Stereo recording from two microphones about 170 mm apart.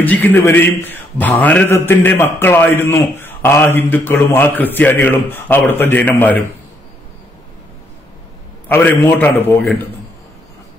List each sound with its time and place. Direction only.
0.0 s a man's voice: 10° left (ahead or behind)
8.6 s a man's voice: 10° left (ahead or behind)